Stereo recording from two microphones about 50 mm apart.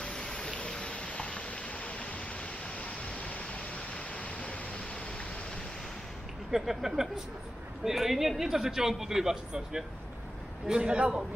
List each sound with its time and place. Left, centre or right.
0.0 s rain: centre
2.8 s pink noise: left
6.5 s a man's voice: centre